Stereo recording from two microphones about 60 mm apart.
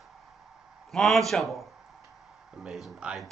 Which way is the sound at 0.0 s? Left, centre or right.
Centre.